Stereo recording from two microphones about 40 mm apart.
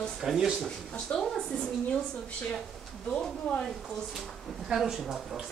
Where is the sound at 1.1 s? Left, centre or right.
Left.